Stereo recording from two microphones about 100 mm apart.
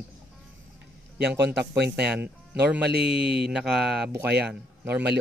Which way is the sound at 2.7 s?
10° right (ahead or behind).